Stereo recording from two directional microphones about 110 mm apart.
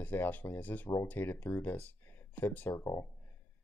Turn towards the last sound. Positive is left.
turn(degrees=30)  # may be behind; listen again after turning